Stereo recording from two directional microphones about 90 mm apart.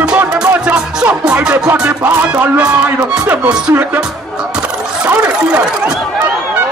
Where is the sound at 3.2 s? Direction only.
20° right (ahead or behind).